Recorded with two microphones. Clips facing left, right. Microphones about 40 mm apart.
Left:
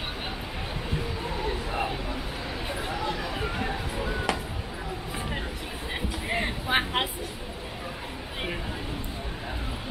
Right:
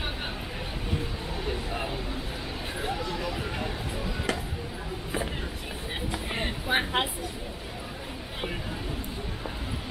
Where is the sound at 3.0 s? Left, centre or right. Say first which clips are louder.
Left 2 dB; left.